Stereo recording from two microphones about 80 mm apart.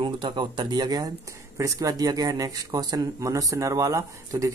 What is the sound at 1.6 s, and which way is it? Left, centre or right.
Speech, right.